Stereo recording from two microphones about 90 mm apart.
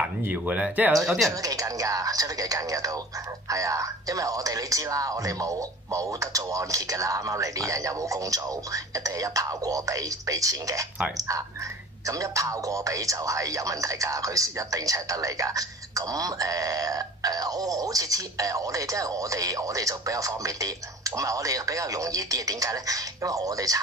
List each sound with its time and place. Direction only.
0.2 s speech: 15° right (ahead or behind)
1.0 s speech: centre (ahead or behind)
1.4 s speech: 40° right (ahead or behind)